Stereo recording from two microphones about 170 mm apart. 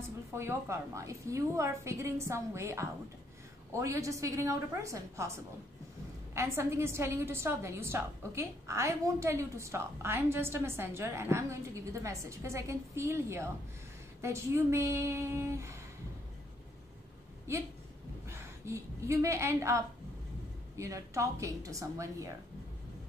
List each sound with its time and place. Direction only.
0.3 s a woman's voice: 15° right (ahead or behind)
18.3 s a woman's voice: 15° right (ahead or behind)